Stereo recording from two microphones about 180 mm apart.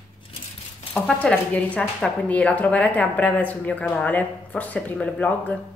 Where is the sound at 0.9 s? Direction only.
5° left (ahead or behind).